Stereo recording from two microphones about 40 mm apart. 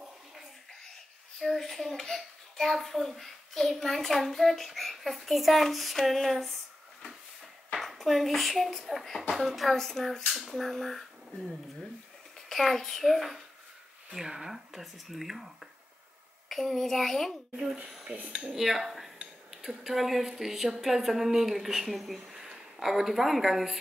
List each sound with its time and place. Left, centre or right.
1.4 s a woman's voice: centre
7.7 s a woman's voice: centre
14.1 s speech: centre
16.4 s speech: centre
18.1 s cutlery: right
18.5 s a woman's voice: centre